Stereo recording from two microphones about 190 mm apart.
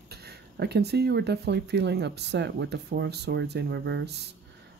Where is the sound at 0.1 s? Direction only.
55° right (ahead or behind).